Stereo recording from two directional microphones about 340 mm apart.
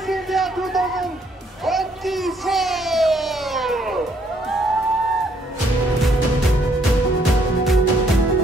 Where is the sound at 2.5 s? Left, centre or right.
Centre.